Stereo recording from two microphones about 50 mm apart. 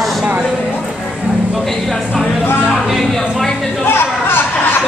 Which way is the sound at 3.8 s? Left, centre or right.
Left.